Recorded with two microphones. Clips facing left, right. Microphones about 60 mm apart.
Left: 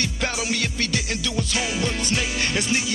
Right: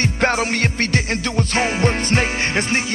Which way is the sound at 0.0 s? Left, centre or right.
Right.